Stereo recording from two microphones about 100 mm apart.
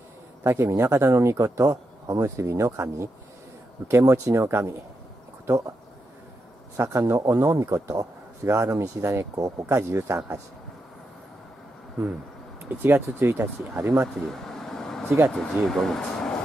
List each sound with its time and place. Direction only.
0.4 s speech: 30° right (ahead or behind)
6.8 s speech: 25° right (ahead or behind)
12.6 s speech: 20° right (ahead or behind)
14.4 s vehicle: 5° left (ahead or behind)
15.0 s speech: 20° right (ahead or behind)
15.3 s speech: 5° left (ahead or behind)